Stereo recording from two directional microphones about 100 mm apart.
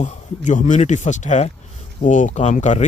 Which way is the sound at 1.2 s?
90° left.